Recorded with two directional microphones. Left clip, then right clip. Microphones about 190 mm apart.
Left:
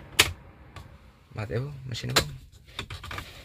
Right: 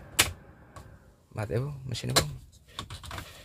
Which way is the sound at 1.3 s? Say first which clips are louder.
Right 1 dB; 15° right (ahead or behind).